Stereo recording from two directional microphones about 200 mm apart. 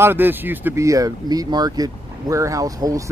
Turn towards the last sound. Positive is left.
turn(degrees=-15)  # may be behind; listen again after turning